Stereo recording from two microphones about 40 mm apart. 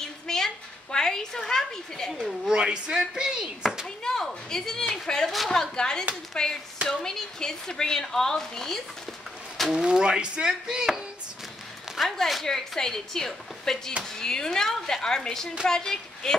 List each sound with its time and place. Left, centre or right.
0.0 s a sound: centre
0.9 s a woman's voice: centre
2.5 s speech: right
3.8 s a sound: centre
4.9 s speech: centre
9.7 s speech: centre
12.0 s speech: centre
12.4 s speech: centre